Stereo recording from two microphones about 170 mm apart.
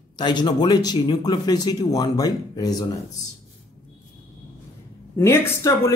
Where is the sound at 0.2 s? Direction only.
25° left (ahead or behind).